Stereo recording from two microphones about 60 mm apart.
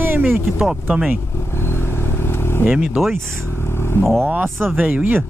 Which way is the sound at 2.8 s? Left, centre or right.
Centre.